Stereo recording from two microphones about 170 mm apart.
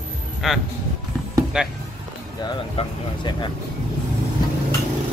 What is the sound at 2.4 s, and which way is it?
Speech, 25° left (ahead or behind).